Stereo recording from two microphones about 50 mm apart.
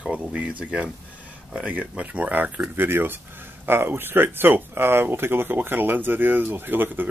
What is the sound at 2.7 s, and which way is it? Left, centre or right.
Speech, right.